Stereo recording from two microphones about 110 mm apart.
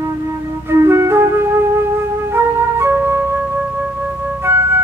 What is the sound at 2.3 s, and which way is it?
Music, 20° right (ahead or behind).